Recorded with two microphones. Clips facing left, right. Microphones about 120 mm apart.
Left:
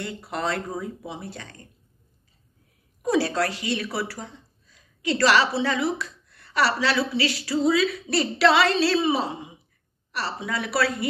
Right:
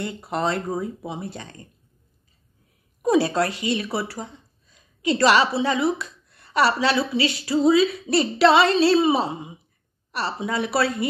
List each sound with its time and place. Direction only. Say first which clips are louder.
0.0 s a woman's voice: right 4 dB; 25° right (ahead or behind)
3.0 s a woman's voice: right 3 dB; 20° right (ahead or behind)